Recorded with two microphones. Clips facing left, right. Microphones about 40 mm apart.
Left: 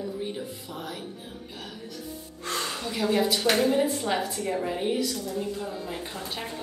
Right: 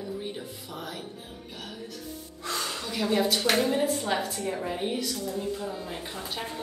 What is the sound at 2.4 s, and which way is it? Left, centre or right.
Gasp, left.